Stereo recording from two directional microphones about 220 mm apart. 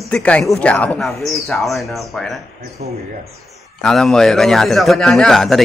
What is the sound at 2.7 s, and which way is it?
Speech, 30° right (ahead or behind).